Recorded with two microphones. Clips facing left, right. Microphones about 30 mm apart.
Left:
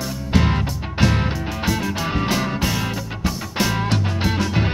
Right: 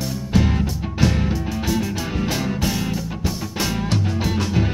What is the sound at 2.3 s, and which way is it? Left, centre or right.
Music, centre.